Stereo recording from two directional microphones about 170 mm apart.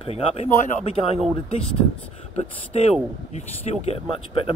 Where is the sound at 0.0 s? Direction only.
35° left (ahead or behind).